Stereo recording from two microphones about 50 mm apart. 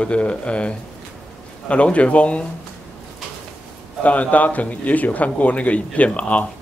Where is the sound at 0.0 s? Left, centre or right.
Left.